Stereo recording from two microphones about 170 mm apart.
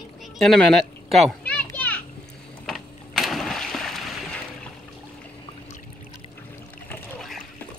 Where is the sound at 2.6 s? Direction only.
Centre (ahead or behind).